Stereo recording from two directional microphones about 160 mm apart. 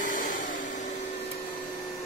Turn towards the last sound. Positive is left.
turn(degrees=55)  # may be behind; listen again after turning